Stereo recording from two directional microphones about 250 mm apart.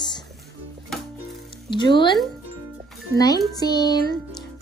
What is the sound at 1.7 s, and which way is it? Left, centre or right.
Speech, centre.